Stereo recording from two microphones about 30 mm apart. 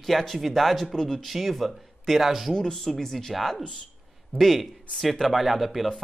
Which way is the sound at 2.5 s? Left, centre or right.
Left.